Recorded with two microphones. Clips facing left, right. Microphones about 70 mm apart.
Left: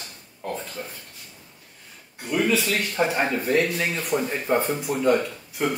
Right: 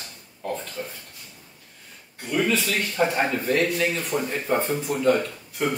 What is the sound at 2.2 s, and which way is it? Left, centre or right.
Speech, centre.